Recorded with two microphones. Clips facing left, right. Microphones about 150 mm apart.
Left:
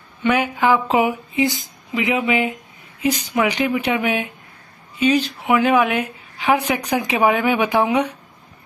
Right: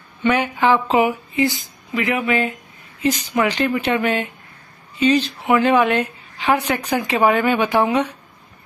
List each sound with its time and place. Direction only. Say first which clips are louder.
0.2 s a woman's voice: even; 10° left (ahead or behind)